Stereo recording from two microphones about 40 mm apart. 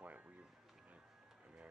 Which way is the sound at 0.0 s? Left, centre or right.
Right.